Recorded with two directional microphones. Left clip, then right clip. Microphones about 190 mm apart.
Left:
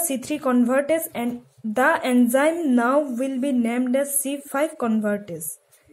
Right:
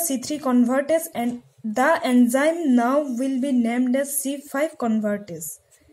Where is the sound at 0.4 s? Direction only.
5° left (ahead or behind).